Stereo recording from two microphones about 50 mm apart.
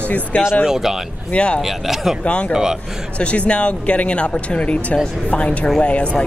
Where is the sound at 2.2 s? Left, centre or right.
Left.